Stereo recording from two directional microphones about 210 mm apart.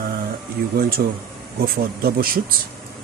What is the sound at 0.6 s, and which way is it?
Speech, 50° right (ahead or behind).